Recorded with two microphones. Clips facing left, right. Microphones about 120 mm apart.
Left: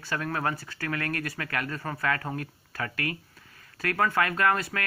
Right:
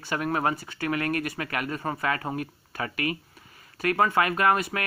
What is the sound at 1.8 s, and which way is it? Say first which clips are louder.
Speech: right 3 dB; 20° right (ahead or behind).